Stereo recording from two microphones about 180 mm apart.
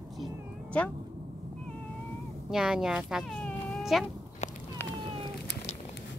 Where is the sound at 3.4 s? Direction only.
Centre (ahead or behind).